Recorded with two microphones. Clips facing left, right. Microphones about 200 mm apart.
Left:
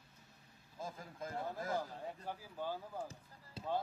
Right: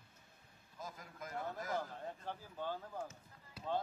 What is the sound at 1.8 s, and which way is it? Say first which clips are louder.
Speech: left 1 dB; 10° left (ahead or behind).